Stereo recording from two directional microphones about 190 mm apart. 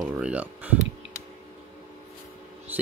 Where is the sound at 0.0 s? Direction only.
5° right (ahead or behind).